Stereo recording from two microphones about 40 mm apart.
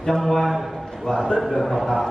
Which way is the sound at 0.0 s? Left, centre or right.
Centre.